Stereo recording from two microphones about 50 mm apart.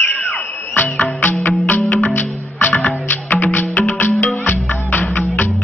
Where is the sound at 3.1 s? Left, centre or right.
Left.